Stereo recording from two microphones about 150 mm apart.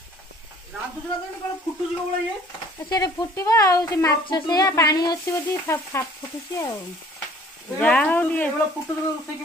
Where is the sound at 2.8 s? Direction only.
30° left (ahead or behind).